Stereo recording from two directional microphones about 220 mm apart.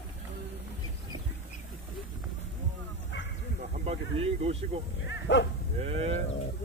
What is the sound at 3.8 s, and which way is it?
Speech, 25° right (ahead or behind).